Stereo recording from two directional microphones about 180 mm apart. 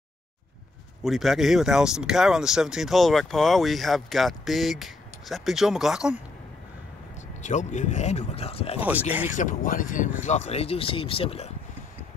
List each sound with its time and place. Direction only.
1.0 s speech: centre (ahead or behind)
7.4 s speech: 40° left (ahead or behind)
8.7 s speech: 10° right (ahead or behind)
9.3 s speech: 45° left (ahead or behind)